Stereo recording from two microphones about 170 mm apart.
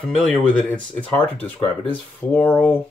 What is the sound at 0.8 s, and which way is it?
Speech, 10° left (ahead or behind).